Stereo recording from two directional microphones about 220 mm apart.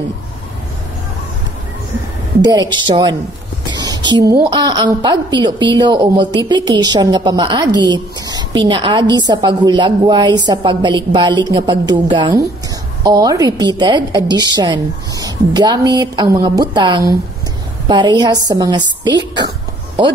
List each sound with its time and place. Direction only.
2.4 s a woman's voice: 20° right (ahead or behind)